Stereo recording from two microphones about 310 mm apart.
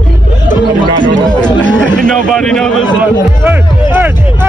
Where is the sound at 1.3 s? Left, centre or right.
Centre.